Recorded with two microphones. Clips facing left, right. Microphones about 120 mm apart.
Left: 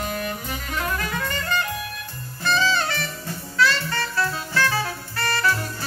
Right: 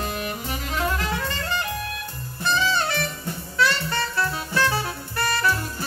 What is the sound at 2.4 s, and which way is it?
Jazz, 20° right (ahead or behind).